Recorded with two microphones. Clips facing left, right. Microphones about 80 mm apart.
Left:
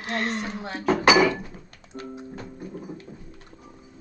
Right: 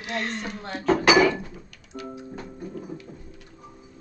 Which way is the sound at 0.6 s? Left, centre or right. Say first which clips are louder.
Right 3 dB; centre.